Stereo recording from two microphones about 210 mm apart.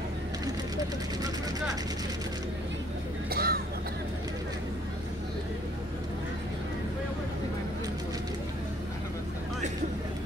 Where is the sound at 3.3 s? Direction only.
45° right (ahead or behind).